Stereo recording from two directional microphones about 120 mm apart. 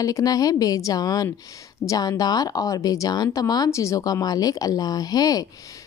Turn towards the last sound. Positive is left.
turn(degrees=30)  # may be behind; listen again after turning